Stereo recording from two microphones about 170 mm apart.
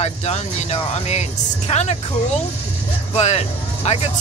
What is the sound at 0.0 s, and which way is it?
Speech, 40° left (ahead or behind).